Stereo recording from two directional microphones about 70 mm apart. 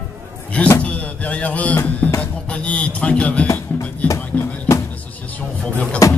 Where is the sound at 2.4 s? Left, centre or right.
Centre.